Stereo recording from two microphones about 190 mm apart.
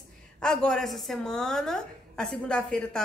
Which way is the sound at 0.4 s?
5° left (ahead or behind).